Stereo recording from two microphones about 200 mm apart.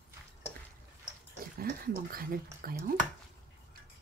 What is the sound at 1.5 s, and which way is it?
Speech, 50° right (ahead or behind).